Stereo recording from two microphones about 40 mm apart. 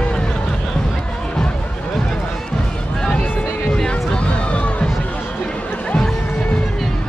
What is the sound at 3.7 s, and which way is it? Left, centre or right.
Music, left.